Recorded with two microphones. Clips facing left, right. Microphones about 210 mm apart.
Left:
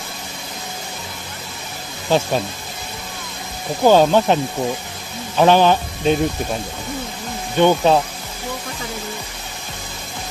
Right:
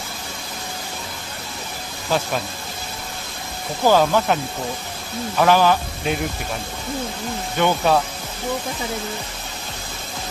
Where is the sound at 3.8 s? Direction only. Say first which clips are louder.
Left 4 dB; 25° left (ahead or behind).